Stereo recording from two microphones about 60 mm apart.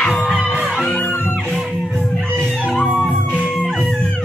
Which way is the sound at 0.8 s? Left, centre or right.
Left.